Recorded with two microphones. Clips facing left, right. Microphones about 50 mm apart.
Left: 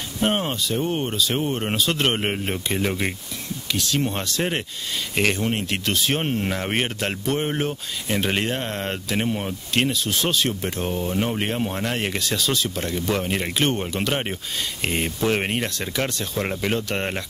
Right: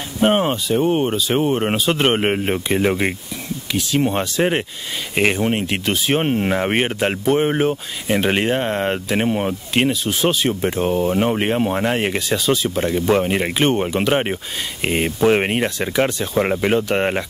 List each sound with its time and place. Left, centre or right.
0.2 s speech: centre